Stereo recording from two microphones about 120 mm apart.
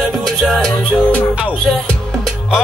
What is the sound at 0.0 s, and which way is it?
Music, 5° left (ahead or behind).